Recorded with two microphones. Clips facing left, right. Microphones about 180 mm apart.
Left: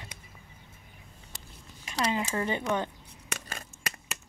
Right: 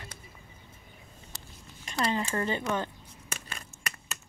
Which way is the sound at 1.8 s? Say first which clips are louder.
Even; 5° left (ahead or behind).